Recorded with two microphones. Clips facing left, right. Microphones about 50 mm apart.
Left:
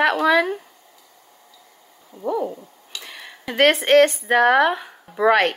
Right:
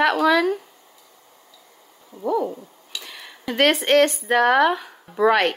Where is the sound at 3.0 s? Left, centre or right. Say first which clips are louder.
Even; centre.